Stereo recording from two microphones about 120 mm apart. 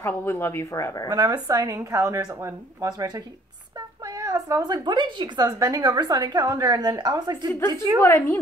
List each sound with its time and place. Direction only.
0.0 s speech: 15° left (ahead or behind)
1.0 s speech: 35° right (ahead or behind)
4.2 s a woman's voice: 30° right (ahead or behind)
8.0 s a woman's voice: 25° left (ahead or behind)